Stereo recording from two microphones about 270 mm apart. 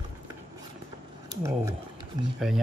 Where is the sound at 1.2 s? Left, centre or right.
Centre.